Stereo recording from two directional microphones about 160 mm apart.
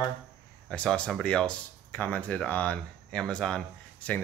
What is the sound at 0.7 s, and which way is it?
Speech, 5° left (ahead or behind).